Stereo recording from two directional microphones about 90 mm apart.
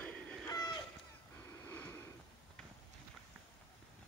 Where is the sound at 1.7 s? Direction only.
20° left (ahead or behind).